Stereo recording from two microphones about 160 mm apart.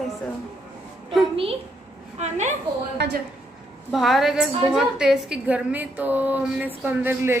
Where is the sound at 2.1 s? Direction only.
45° right (ahead or behind).